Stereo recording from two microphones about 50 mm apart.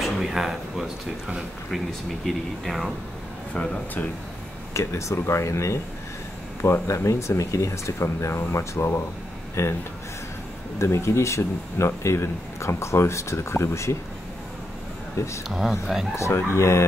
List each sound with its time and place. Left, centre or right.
0.0 s speech: centre
1.9 s speech: centre
3.5 s speech: left
4.7 s speech: left
6.6 s speech: left
7.1 s speech: left
10.8 s speech: left
15.4 s speech: centre
16.3 s speech: left